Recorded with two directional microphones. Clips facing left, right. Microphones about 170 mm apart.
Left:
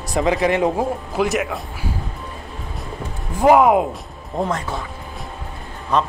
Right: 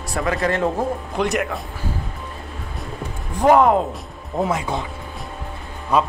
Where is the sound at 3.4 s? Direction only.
5° left (ahead or behind).